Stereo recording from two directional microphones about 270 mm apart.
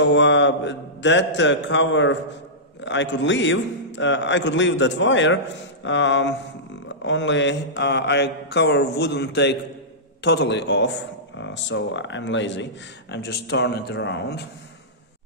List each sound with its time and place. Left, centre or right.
0.0 s a man's voice: left
7.1 s mantra: left